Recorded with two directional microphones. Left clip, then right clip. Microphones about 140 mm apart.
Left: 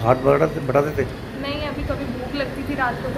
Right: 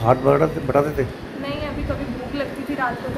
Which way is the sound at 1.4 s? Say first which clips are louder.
Left 1 dB; 5° left (ahead or behind).